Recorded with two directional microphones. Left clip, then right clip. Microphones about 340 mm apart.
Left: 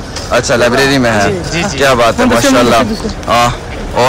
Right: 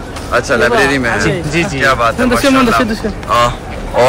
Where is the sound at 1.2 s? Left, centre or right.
Right.